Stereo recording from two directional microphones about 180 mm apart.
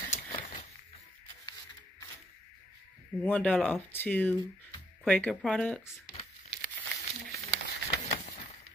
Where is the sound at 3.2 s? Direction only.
10° left (ahead or behind).